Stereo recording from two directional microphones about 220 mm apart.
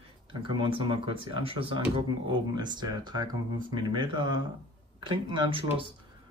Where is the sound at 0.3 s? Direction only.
20° right (ahead or behind).